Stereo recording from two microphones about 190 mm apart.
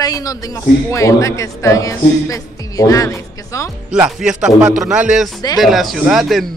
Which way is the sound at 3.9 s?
5° right (ahead or behind).